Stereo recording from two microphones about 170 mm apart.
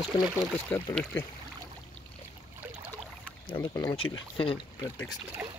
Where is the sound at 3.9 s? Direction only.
30° left (ahead or behind).